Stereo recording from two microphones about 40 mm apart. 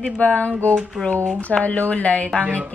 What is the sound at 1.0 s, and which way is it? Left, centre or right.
Speech, left.